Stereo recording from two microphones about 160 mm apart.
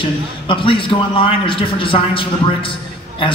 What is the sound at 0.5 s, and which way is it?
A man's voice, 35° left (ahead or behind).